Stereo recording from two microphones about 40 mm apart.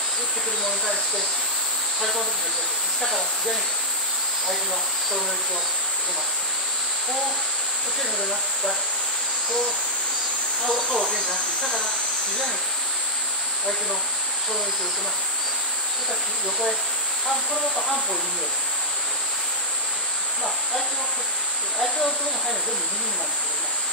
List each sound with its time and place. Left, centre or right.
2.0 s speech: centre
10.6 s speech: centre
10.9 s speech: left